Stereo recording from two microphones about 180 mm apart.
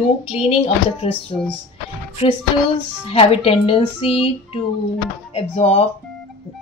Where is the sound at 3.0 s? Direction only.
35° left (ahead or behind).